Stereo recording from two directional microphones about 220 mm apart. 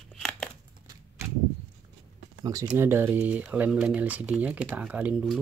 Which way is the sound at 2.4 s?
15° right (ahead or behind).